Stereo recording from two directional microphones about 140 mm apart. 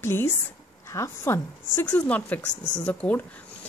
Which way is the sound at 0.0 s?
15° left (ahead or behind).